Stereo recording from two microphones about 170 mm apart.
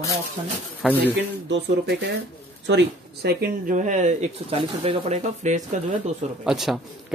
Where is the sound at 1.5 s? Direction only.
90° right; by 5.8 s 45° right (ahead or behind).